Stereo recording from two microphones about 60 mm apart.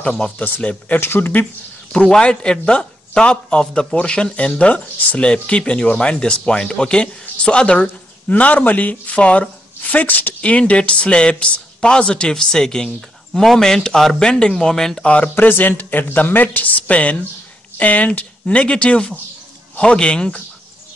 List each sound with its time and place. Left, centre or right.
0.0 s speech: centre
0.4 s speech: left
0.9 s speech: left
1.4 s speech: centre
15.0 s speech: left